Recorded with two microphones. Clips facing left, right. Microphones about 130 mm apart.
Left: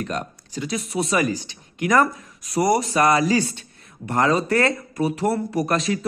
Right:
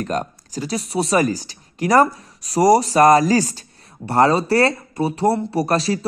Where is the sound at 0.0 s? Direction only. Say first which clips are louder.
Right 4 dB; 40° right (ahead or behind).